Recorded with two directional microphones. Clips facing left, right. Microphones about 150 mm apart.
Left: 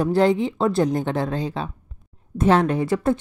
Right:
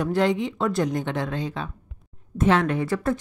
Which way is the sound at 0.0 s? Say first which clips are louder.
Left 4 dB; 35° left (ahead or behind).